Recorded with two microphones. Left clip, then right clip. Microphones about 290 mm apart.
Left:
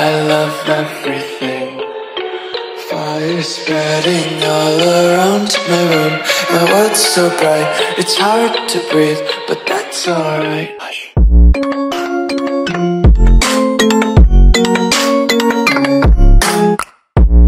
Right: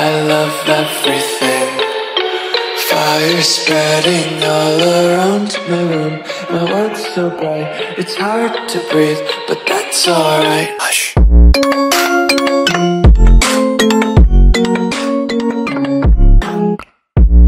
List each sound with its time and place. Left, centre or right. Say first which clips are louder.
0.0 s music: even; centre
2.9 s music: right 5 dB; right; by 6.1 s left
6.5 s music: left 3 dB; left
7.3 s music: left 6 dB; left
8.1 s music: left 3 dB; centre
8.9 s music: even; centre
10.0 s a sound: right 5 dB; centre
11.1 s music: right 4 dB; right; by 13.1 s centre
13.4 s music: even; centre; by 16.6 s left